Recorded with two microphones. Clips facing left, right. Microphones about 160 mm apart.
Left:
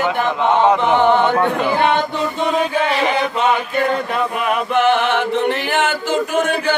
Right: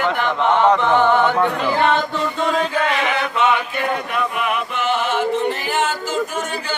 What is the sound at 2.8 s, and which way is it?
Chant, 35° left (ahead or behind).